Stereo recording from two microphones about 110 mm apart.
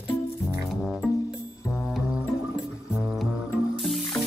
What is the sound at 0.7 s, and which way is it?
Music, centre (ahead or behind).